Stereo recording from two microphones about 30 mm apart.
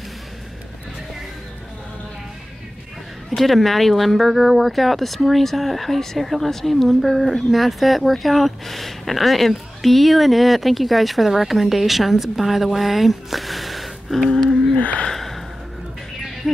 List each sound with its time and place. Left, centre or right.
3.3 s speech: centre
14.8 s gasp: left
15.1 s a sound: centre
16.5 s speech: centre